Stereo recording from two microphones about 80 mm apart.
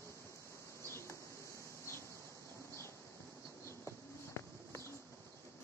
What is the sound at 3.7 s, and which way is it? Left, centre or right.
Insect, left.